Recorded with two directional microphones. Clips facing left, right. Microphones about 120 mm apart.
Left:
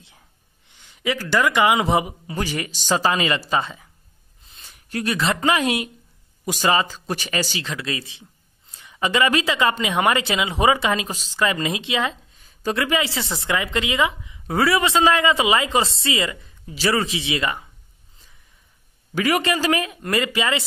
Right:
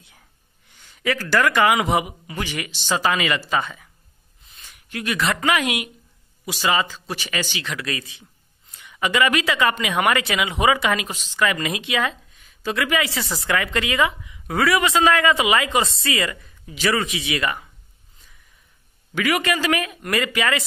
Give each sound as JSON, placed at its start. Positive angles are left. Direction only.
{"t": 0.7, "sound": "speech", "side_deg": 20}
{"t": 6.4, "sound": "speech", "side_deg": 45}
{"t": 7.7, "sound": "speech", "side_deg": 25}
{"t": 12.4, "sound": "speech", "side_deg": 35}
{"t": 19.1, "sound": "speech", "side_deg": 35}